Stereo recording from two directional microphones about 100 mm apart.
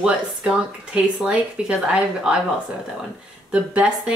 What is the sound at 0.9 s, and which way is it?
Speech, 10° right (ahead or behind).